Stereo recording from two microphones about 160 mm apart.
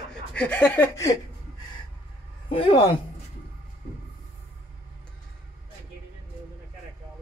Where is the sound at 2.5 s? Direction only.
35° left (ahead or behind).